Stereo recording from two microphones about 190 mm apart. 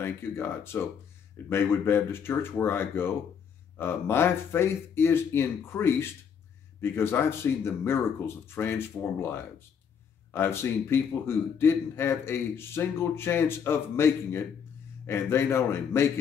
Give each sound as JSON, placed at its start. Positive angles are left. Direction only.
{"t": 0.0, "sound": "a man's voice", "side_deg": 10}